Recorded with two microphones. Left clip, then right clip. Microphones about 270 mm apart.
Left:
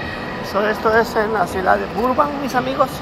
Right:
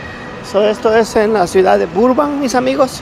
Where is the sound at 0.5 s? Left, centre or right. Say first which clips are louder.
Right 5 dB; right.